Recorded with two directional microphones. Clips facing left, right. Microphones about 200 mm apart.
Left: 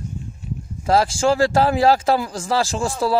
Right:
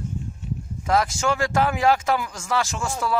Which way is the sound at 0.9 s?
30° left (ahead or behind).